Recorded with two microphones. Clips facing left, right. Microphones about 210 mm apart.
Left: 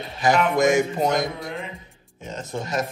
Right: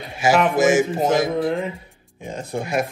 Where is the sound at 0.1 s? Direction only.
10° right (ahead or behind).